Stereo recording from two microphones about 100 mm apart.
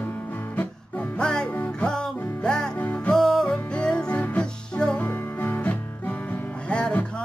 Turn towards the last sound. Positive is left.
turn(degrees=10)  # may be behind; listen again after turning